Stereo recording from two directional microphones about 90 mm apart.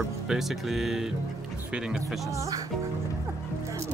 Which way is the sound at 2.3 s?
40° right (ahead or behind).